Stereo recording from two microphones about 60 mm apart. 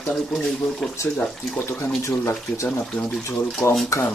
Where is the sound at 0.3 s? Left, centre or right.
Centre.